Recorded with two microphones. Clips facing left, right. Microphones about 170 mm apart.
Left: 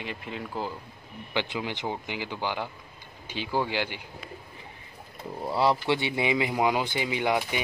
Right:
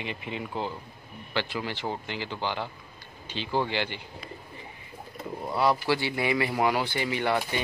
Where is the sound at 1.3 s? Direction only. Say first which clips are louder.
Left 1 dB; 15° left (ahead or behind).